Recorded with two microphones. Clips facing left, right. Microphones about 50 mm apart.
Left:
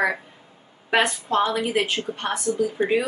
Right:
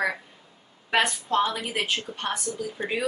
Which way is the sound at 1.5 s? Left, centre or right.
Centre.